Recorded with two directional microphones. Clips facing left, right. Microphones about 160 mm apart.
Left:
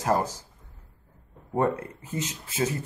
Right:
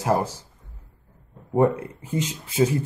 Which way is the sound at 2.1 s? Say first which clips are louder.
Right 7 dB; 15° right (ahead or behind).